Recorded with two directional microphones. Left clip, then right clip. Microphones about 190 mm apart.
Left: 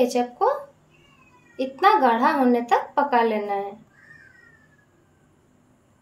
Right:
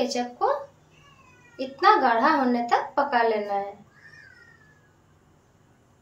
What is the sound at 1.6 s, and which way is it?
A woman's voice, 40° left (ahead or behind).